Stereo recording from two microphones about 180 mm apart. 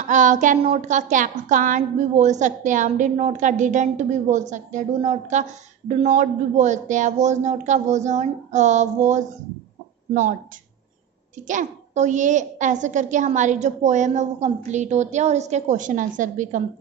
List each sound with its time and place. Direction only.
0.1 s a child's voice: 45° right (ahead or behind)
11.4 s a child's voice: 45° right (ahead or behind)